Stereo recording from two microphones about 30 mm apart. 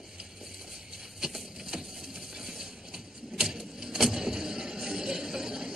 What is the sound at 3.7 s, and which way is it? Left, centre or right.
Vehicle, centre.